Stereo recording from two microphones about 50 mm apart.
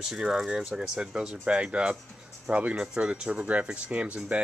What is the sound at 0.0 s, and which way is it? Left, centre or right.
Speech, centre.